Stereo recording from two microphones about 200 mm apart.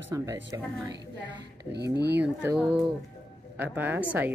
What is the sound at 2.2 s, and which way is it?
Speech, 5° right (ahead or behind).